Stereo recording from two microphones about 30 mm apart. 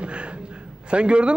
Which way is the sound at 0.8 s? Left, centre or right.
Right.